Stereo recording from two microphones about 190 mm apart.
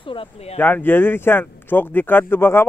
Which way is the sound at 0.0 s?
30° left (ahead or behind).